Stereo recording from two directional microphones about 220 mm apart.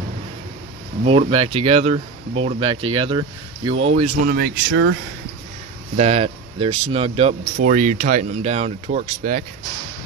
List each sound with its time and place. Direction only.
1.0 s speech: 25° right (ahead or behind); by 4.9 s 60° right (ahead or behind)
5.9 s speech: 30° right (ahead or behind)